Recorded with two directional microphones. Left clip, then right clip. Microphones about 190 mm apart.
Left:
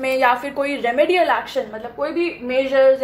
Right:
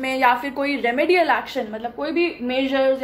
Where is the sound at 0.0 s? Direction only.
5° right (ahead or behind).